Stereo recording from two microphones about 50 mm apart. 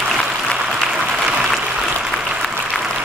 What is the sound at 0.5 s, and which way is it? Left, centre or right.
Applause, centre.